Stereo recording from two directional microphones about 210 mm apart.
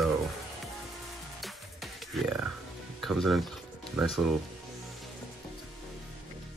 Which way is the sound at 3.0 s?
Centre (ahead or behind).